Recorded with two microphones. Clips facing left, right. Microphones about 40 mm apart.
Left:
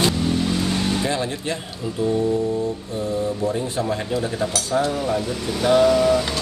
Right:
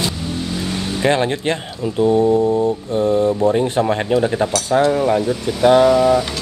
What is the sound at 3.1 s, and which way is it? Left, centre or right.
Speech, right.